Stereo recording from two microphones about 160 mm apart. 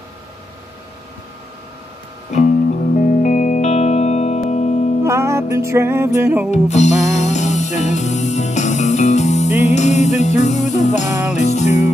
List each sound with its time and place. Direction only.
2.3 s music: 50° left (ahead or behind)
5.0 s music: 15° right (ahead or behind)
6.5 s music: 45° left (ahead or behind)